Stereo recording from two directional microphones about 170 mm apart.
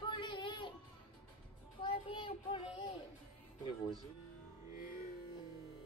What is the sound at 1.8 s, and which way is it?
A child's voice, 30° left (ahead or behind).